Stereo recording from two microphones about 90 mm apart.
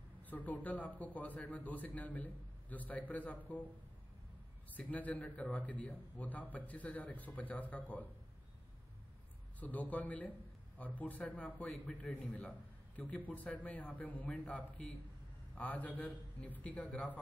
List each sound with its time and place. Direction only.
0.3 s a man's voice: 15° left (ahead or behind)
4.7 s a man's voice: 20° left (ahead or behind)
9.6 s a man's voice: 20° left (ahead or behind)